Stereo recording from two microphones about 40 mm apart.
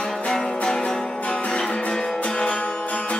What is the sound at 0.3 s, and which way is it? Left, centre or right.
Music, centre.